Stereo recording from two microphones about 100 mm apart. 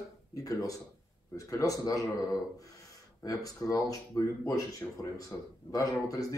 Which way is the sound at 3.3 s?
35° left (ahead or behind).